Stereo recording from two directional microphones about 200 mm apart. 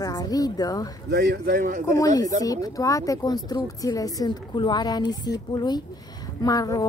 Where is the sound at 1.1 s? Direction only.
55° right (ahead or behind).